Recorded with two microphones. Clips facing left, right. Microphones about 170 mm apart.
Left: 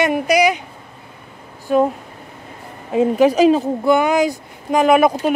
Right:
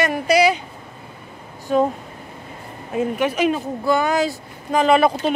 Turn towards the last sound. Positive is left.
turn(degrees=10)  # may be behind; listen again after turning